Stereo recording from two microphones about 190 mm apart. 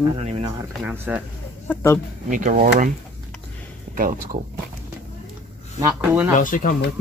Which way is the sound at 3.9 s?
45° right (ahead or behind).